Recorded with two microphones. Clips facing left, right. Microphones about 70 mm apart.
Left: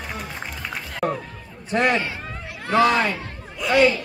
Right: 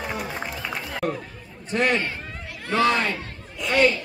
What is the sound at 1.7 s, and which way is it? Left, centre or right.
Speech, left.